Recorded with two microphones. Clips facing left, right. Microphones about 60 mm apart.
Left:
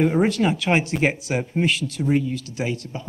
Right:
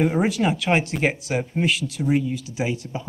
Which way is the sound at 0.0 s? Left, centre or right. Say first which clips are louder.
Left 1 dB; centre.